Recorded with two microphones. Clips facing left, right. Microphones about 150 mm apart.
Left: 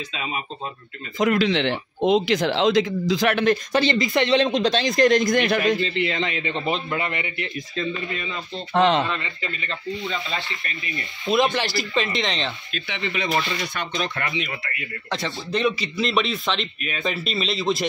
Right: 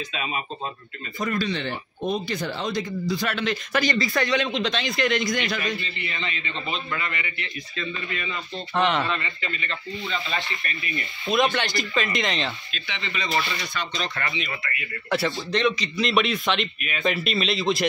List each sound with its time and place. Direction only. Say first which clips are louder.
1.1 s speech: left 7 dB; 90° left
3.7 s speech: left 3 dB; 25° left (ahead or behind)
4.5 s a man's voice: left 5 dB; 40° left (ahead or behind); by 5.8 s 55° left (ahead or behind)
5.8 s a man's voice: left 10 dB; 90° left; by 7.5 s 55° left (ahead or behind)
8.7 s a man's voice: left 4 dB; 30° left (ahead or behind)
11.2 s a man's voice: left 2 dB; centre (ahead or behind)
12.7 s speech: left 5 dB; 55° left (ahead or behind)
15.0 s a man's voice: right 4 dB; 5° right (ahead or behind)
15.5 s a man's voice: left 3 dB; 5° left (ahead or behind)